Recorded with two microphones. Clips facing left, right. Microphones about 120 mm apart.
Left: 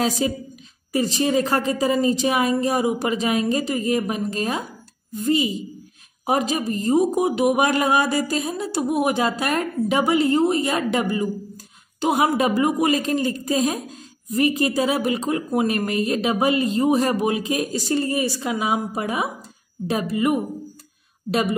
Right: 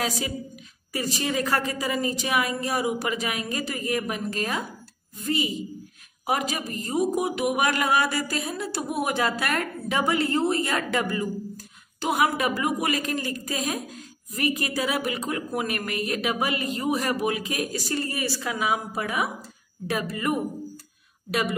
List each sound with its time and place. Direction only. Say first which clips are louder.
0.2 s a woman's voice: left 8 dB; 30° left (ahead or behind)